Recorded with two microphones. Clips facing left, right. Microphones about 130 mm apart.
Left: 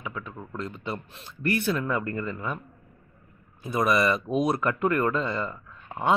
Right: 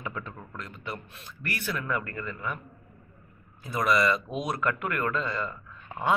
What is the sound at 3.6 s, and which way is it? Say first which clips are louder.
Speech: left 2 dB; 25° left (ahead or behind).